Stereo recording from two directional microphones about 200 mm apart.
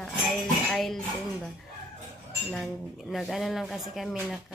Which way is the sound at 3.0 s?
Centre (ahead or behind).